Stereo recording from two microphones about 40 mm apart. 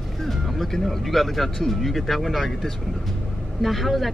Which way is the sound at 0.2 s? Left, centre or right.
Centre.